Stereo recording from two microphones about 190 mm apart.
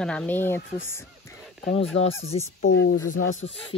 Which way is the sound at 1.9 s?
90° left.